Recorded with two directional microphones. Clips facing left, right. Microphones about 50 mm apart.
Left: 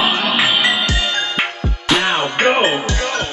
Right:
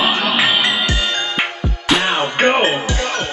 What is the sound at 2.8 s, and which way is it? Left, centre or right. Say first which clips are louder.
Music: even; right.